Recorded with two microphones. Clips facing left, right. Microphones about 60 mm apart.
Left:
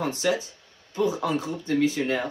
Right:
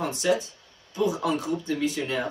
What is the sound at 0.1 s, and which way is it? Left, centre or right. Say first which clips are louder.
Speech: right 1 dB; left.